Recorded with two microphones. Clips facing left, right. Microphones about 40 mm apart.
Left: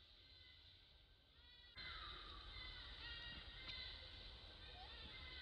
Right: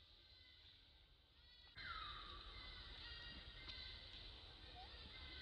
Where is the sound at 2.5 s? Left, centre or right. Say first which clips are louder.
Left 2 dB; centre.